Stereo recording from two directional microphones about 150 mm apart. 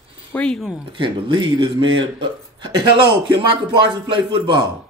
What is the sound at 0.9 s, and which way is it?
A man's voice, 35° right (ahead or behind).